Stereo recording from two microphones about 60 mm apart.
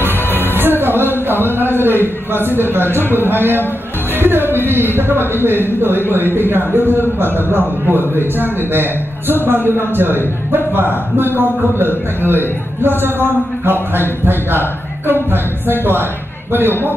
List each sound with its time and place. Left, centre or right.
0.0 s music: right
1.3 s a man's voice: right
15.3 s a man's voice: right